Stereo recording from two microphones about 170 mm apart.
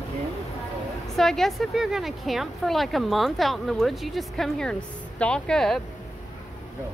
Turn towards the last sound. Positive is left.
turn(degrees=5)  # may be behind; listen again after turning